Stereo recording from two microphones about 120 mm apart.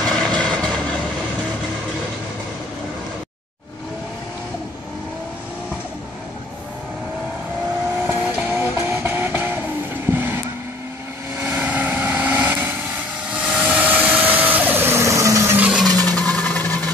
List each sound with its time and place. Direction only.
0.1 s vehicle: 5° left (ahead or behind)
8.1 s vehicle: 15° right (ahead or behind)
11.4 s vehicle: 15° right (ahead or behind)
15.9 s a sound: 10° left (ahead or behind)